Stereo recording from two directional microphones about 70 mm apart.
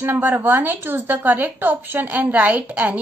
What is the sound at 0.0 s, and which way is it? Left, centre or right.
Speech, right.